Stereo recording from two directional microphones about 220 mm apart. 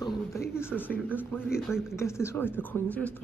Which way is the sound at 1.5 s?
Centre (ahead or behind).